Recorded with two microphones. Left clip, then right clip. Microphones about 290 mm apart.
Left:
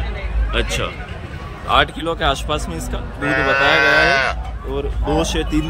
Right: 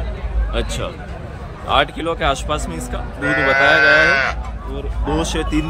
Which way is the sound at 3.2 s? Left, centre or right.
Centre.